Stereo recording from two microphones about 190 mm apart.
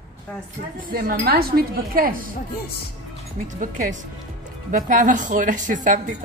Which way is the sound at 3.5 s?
45° right (ahead or behind).